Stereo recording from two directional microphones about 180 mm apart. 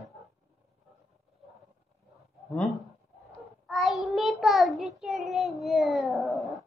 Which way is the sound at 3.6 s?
Centre (ahead or behind).